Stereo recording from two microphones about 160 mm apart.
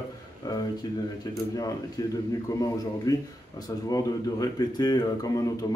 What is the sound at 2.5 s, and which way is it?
Speech, 20° left (ahead or behind).